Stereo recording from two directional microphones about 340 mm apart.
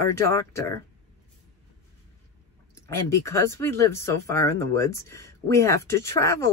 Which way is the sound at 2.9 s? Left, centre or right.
Centre.